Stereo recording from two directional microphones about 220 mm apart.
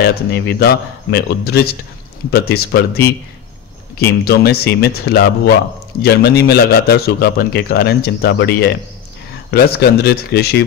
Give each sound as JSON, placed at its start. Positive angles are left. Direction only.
{"t": 0.0, "sound": "a man's voice", "side_deg": 50}
{"t": 4.0, "sound": "a man's voice", "side_deg": 45}